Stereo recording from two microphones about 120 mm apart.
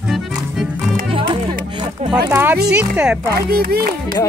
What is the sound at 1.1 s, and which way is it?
Music, 45° right (ahead or behind).